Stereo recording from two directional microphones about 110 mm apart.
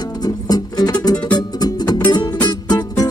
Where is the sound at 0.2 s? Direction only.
35° left (ahead or behind).